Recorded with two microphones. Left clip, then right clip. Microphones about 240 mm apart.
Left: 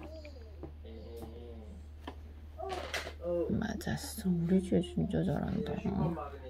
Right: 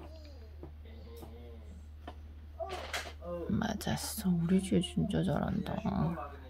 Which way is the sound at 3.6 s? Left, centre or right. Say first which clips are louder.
Right 2 dB; right.